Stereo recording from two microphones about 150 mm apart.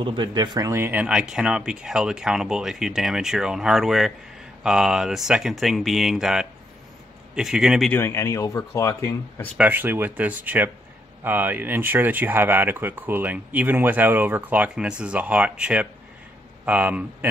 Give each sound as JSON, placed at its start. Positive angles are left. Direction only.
{"t": 0.0, "sound": "speech", "side_deg": -30}
{"t": 7.9, "sound": "speech", "side_deg": 15}
{"t": 9.6, "sound": "speech", "side_deg": -15}